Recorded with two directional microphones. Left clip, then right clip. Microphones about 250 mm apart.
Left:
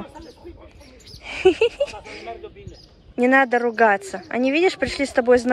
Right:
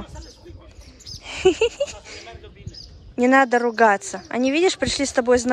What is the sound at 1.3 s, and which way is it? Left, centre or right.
Speech, centre.